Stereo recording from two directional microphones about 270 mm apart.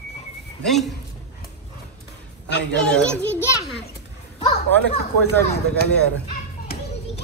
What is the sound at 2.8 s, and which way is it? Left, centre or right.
Children playing, centre.